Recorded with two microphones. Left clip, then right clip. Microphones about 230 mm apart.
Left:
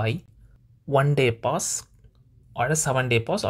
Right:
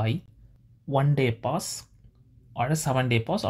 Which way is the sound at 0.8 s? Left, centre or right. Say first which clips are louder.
Left 5 dB; left.